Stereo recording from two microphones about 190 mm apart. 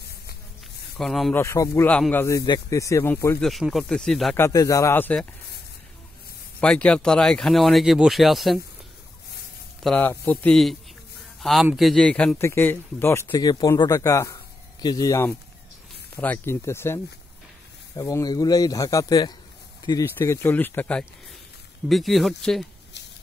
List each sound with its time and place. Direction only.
0.9 s speech: centre (ahead or behind)
1.3 s speech: 15° left (ahead or behind)
3.4 s speech: centre (ahead or behind)
4.4 s speech: 15° left (ahead or behind)
6.6 s speech: 5° left (ahead or behind)
9.8 s a man's voice: 10° left (ahead or behind)